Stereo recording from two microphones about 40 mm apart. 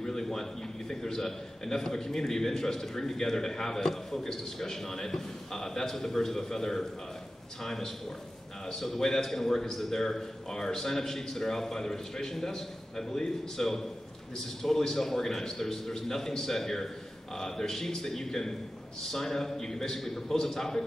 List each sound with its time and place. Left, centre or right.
0.0 s a man's voice: centre